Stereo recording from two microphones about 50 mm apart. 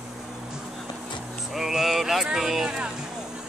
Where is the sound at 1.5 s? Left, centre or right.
Centre.